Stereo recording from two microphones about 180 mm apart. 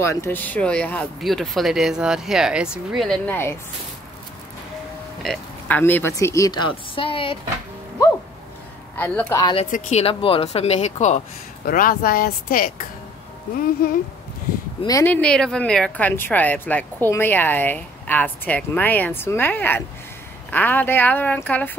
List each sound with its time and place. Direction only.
0.0 s speech: 15° left (ahead or behind)
5.2 s speech: 5° left (ahead or behind); by 7.3 s 30° left (ahead or behind)
8.9 s speech: 10° left (ahead or behind)
9.4 s speech: 25° left (ahead or behind)
9.7 s speech: 40° left (ahead or behind)
14.8 s speech: 20° left (ahead or behind)
15.1 s speech: 5° left (ahead or behind)